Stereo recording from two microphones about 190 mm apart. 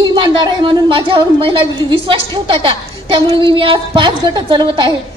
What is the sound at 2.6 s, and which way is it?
A woman's voice, 25° right (ahead or behind).